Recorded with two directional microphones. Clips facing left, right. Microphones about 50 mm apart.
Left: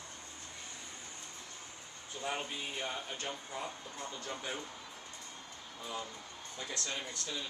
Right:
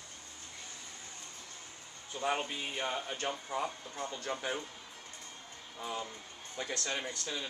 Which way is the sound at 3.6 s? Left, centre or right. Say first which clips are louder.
Right 4 dB; right.